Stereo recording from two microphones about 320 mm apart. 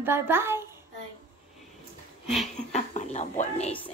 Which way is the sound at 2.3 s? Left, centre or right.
Centre.